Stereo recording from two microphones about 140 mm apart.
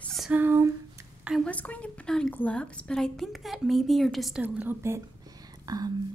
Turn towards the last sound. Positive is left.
turn(degrees=-25)  # may be behind; listen again after turning